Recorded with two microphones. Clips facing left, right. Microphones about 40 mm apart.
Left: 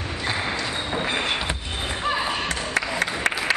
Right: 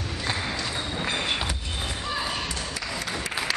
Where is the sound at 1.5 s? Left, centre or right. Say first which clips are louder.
Left 3 dB; left.